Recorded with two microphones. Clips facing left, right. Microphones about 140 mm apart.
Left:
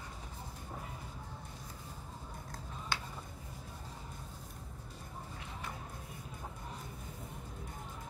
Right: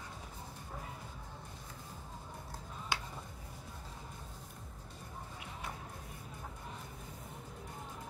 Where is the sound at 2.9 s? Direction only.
15° right (ahead or behind).